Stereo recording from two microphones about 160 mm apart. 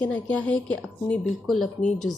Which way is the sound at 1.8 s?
50° left (ahead or behind).